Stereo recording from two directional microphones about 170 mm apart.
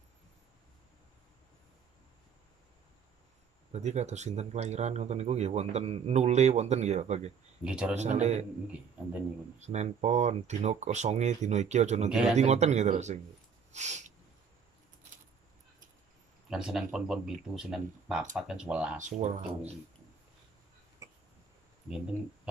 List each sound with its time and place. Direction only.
3.7 s speech: 40° right (ahead or behind)
7.6 s speech: 5° right (ahead or behind)
7.9 s speech: 40° right (ahead or behind)
9.6 s speech: 40° right (ahead or behind)
12.1 s speech: 5° right (ahead or behind)
12.4 s speech: 40° right (ahead or behind)
13.7 s a sound: 45° right (ahead or behind)
16.4 s speech: 5° right (ahead or behind)
18.9 s speech: 45° right (ahead or behind)
21.8 s speech: 5° right (ahead or behind)